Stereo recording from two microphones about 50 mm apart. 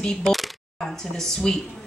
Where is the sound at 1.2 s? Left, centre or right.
Centre.